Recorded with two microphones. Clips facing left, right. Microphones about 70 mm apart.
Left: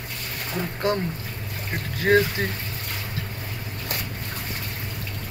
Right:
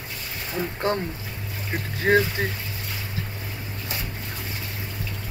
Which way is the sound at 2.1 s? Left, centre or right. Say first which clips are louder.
Left 1 dB; centre.